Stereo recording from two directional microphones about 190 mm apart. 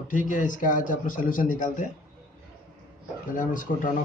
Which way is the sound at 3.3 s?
45° left (ahead or behind).